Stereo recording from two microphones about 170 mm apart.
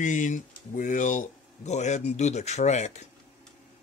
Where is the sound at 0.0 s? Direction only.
50° left (ahead or behind).